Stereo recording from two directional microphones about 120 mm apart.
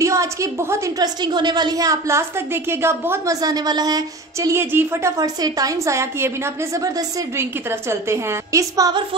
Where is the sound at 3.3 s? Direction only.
30° right (ahead or behind).